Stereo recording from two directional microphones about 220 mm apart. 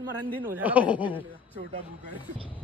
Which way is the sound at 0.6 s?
5° right (ahead or behind).